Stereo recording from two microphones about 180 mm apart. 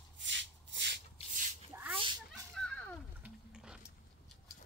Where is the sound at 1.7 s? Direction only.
10° right (ahead or behind).